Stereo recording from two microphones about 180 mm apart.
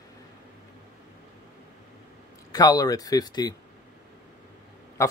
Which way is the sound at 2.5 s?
20° left (ahead or behind).